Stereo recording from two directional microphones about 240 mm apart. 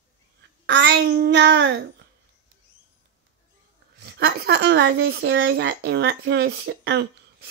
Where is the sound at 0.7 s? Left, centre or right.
Right.